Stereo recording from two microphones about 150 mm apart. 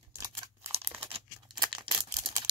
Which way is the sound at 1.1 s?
30° right (ahead or behind).